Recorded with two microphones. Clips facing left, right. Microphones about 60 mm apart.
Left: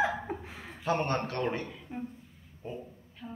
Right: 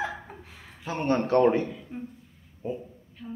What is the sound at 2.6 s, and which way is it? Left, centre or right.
Speech, centre.